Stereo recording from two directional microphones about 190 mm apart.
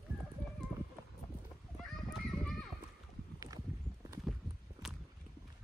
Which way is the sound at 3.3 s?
20° right (ahead or behind).